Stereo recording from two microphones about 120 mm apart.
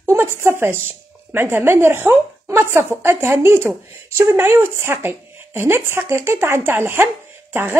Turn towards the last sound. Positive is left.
turn(degrees=-20)  # may be behind; listen again after turning